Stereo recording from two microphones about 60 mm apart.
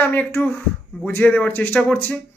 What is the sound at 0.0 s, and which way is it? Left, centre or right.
Speech, left.